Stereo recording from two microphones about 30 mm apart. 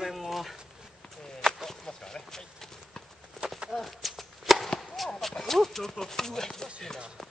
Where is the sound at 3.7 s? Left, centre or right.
Centre.